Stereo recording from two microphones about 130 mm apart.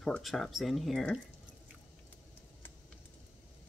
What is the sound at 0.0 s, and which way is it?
Speech, 5° left (ahead or behind).